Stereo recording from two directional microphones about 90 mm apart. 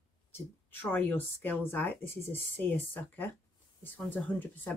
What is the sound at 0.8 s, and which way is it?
Speech, 20° left (ahead or behind).